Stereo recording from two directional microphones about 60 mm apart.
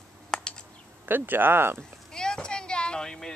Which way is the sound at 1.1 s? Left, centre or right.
Right.